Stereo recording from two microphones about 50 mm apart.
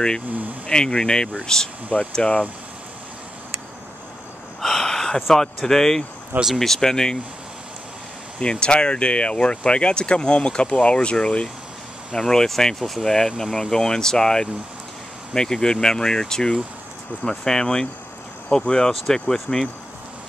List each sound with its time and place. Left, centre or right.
0.7 s speech: centre
4.6 s a sound: centre
5.3 s speech: centre
8.4 s speech: centre
12.1 s speech: centre